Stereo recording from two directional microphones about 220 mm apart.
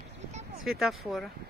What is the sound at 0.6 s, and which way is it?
Speech, centre (ahead or behind).